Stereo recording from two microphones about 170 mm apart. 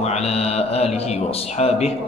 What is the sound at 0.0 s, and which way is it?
A man's voice, 40° left (ahead or behind).